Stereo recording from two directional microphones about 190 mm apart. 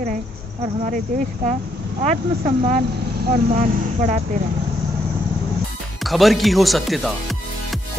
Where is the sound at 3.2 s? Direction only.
45° right (ahead or behind).